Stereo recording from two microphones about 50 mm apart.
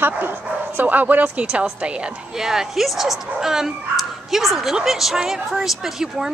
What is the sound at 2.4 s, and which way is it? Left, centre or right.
Speech, centre.